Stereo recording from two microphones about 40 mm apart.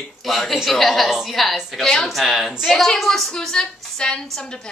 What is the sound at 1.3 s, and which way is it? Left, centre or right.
A woman's voice, centre.